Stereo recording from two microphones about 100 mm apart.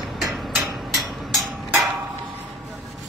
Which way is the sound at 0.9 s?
Centre (ahead or behind).